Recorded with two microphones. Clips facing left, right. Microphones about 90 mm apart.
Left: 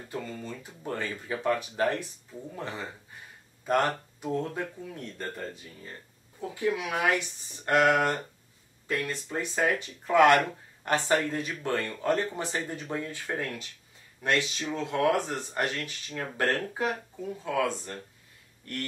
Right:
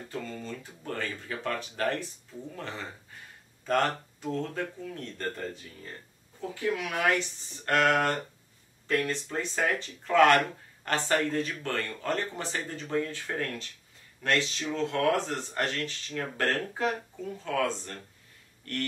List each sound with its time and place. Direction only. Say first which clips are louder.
0.1 s speech: left 1 dB; 15° left (ahead or behind)
6.5 s speech: left 2 dB; 15° left (ahead or behind)